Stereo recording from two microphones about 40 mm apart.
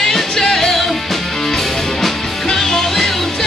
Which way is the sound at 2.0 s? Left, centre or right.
Centre.